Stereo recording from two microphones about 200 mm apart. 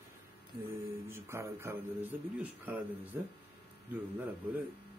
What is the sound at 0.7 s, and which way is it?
Speech, 10° right (ahead or behind).